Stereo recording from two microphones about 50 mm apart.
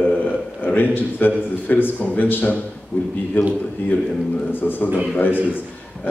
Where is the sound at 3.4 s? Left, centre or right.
Left.